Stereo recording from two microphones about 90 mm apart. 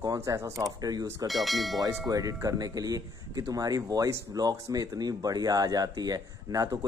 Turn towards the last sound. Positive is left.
turn(degrees=-40)  # may be behind; listen again after turning